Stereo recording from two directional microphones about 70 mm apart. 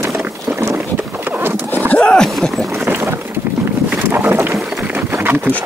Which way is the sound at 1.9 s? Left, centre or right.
Centre.